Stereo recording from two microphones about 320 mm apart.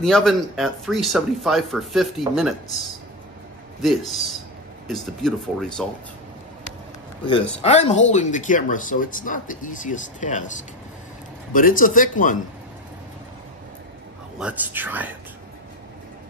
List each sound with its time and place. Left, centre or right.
0.0 s speech: centre
3.8 s speech: centre
7.6 s speech: left
11.5 s speech: left
14.4 s speech: centre